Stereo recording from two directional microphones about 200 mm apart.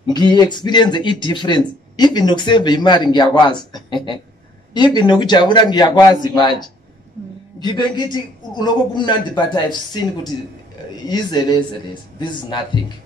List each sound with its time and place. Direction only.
0.0 s speech: 20° left (ahead or behind)